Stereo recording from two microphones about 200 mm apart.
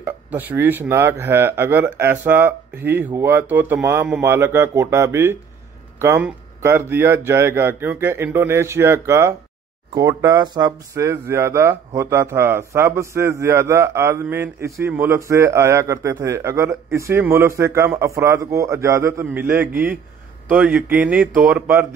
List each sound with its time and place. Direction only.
0.0 s speech: 10° right (ahead or behind)